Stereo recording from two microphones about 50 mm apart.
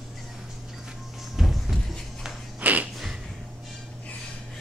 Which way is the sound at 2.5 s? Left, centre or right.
Right.